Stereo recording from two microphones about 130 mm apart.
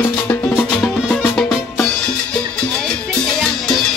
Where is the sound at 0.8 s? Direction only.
5° left (ahead or behind).